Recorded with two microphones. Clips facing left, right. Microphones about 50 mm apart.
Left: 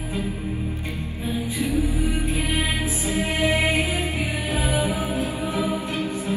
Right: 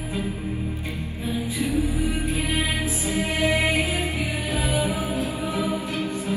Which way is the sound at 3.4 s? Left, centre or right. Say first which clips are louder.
Even; centre.